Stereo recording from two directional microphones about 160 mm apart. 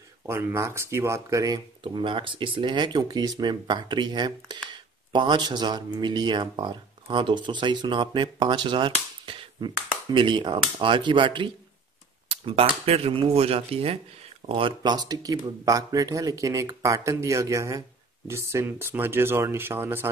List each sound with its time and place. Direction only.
0.3 s speech: 15° right (ahead or behind)